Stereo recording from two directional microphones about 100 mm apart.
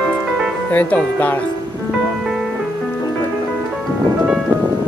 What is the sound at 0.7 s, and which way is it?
Speech, 15° left (ahead or behind).